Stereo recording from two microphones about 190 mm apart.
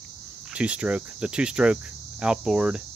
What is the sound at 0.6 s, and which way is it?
Speech, 5° right (ahead or behind).